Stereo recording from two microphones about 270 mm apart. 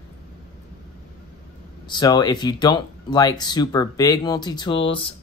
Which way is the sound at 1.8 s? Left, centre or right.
Centre.